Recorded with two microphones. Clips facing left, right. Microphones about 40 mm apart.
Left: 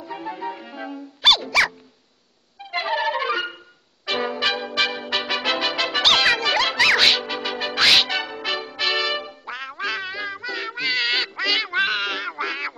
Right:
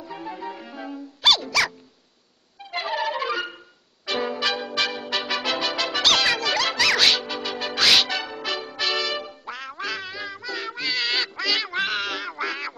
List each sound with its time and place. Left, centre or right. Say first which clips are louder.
0.0 s music: left 3 dB; centre